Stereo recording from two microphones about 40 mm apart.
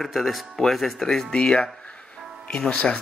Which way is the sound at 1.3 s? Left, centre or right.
Centre.